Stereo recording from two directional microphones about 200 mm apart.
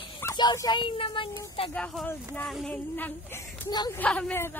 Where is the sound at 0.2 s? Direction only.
15° left (ahead or behind).